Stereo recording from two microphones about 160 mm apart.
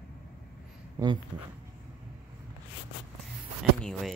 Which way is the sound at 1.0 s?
20° right (ahead or behind).